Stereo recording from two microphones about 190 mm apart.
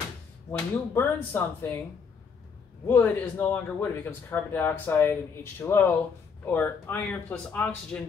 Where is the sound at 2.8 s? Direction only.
10° left (ahead or behind).